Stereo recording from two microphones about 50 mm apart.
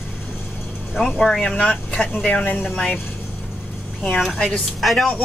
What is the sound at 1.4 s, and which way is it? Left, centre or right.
Speech, centre.